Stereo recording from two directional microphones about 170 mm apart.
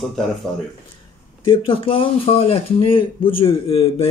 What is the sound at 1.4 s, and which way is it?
Speech, 30° left (ahead or behind).